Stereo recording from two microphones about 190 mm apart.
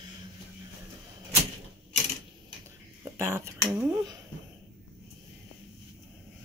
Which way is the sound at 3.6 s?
5° right (ahead or behind).